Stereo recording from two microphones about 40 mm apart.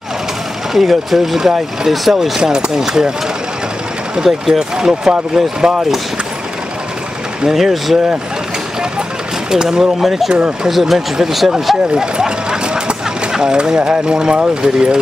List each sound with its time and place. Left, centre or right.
0.7 s speech: centre
4.1 s speech: centre
7.4 s speech: centre
9.5 s speech: centre
10.3 s speech: centre
10.7 s speech: centre
11.9 s a sound: centre
14.6 s speech: centre